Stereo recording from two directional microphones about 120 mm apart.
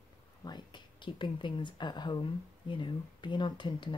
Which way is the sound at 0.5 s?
40° left (ahead or behind).